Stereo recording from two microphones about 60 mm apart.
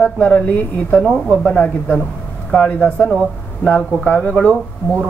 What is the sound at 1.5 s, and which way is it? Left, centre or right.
A woman's voice, left.